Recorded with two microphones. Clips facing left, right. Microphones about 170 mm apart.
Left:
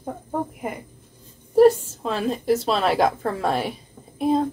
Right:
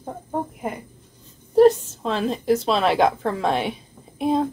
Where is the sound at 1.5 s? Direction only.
5° left (ahead or behind).